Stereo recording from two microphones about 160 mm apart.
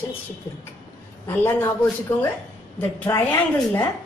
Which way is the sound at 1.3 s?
15° left (ahead or behind).